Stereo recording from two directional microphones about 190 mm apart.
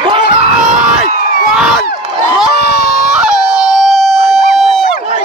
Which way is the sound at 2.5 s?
55° left (ahead or behind).